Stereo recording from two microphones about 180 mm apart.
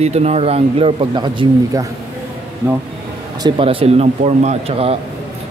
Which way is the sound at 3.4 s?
30° right (ahead or behind).